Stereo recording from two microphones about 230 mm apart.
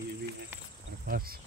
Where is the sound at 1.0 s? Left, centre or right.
Right.